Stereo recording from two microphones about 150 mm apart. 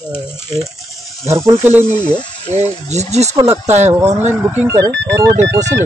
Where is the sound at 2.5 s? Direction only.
50° right (ahead or behind).